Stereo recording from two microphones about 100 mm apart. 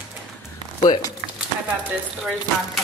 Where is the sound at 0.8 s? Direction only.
40° left (ahead or behind).